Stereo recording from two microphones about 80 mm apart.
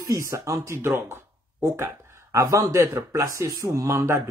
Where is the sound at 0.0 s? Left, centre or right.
Right.